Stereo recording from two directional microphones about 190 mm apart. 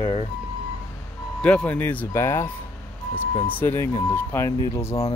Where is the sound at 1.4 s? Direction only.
5° left (ahead or behind).